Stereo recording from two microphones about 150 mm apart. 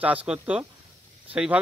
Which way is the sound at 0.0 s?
10° right (ahead or behind).